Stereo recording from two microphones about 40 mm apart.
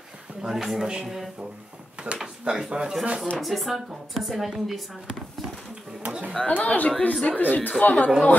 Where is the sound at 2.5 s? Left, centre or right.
Right.